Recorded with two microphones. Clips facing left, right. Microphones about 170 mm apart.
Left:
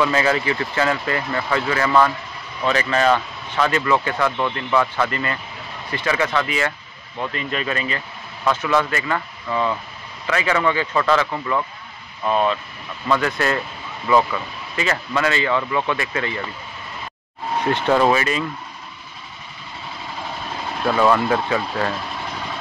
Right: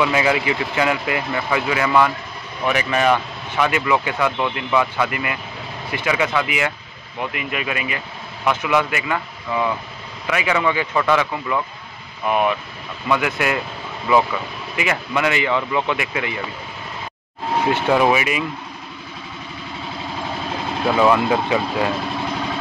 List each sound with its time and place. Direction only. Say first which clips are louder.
0.0 s speech: right 1 dB; 15° right (ahead or behind)
14.8 s speech: even; 15° right (ahead or behind)
17.7 s speech: left 1 dB; 10° right (ahead or behind)
20.8 s speech: right 1 dB; 15° right (ahead or behind)